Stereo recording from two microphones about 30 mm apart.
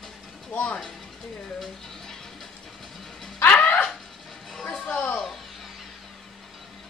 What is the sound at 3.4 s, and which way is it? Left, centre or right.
Music, left.